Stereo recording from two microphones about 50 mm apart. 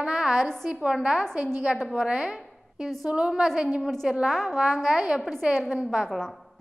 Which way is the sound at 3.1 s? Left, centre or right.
Centre.